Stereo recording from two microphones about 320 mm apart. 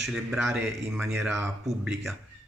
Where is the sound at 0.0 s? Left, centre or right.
Centre.